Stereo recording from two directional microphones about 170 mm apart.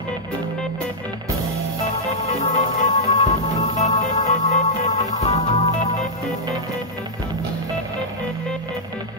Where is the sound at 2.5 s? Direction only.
45° left (ahead or behind).